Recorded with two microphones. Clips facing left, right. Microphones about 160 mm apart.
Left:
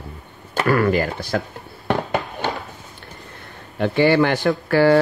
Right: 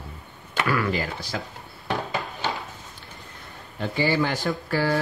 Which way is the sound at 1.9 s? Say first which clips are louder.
Left 6 dB; 60° left (ahead or behind).